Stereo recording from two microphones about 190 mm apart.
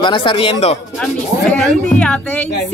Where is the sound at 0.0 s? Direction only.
25° left (ahead or behind).